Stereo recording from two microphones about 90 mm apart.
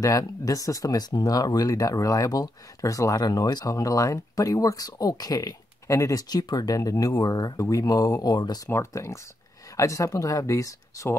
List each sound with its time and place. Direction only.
0.0 s speech: 40° left (ahead or behind)
8.6 s speech: 30° left (ahead or behind)